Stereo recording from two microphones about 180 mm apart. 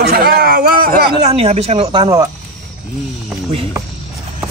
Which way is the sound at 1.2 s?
35° right (ahead or behind).